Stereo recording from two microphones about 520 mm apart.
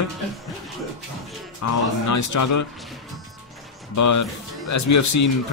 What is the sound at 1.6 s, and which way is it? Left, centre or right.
Speech, left.